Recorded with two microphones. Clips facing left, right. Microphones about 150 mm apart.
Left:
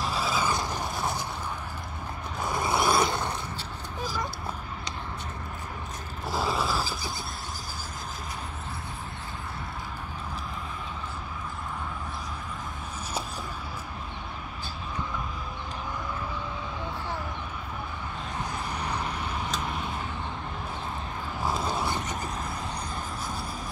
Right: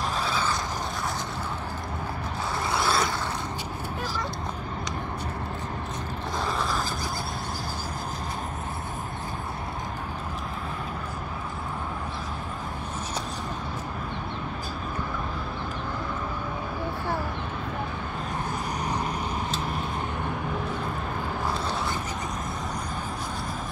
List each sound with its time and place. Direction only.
0.2 s vehicle: 10° left (ahead or behind)
2.5 s vehicle: 15° left (ahead or behind)
6.3 s creak: 5° left (ahead or behind)
21.5 s a sound: 15° left (ahead or behind)